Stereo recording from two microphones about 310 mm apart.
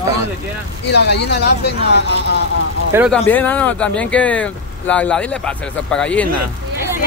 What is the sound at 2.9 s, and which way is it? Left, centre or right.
Speech, centre.